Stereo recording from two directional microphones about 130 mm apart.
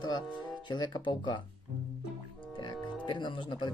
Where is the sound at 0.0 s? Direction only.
35° left (ahead or behind).